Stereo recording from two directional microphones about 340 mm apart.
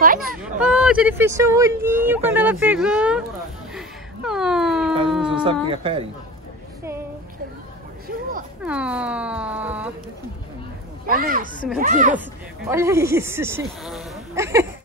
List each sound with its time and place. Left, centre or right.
0.0 s speech: right
0.6 s speech: centre
3.7 s a sound: centre
5.3 s speech: centre
8.6 s speech: centre
11.1 s speech: right
12.6 s speech: centre